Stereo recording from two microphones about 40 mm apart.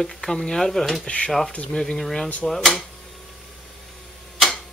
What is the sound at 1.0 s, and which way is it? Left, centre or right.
Speech, left.